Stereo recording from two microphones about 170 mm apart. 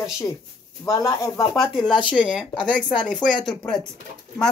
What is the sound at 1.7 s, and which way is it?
Speech, centre (ahead or behind).